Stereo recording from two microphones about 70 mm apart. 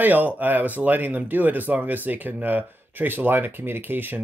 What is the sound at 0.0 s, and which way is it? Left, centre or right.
Speech, right.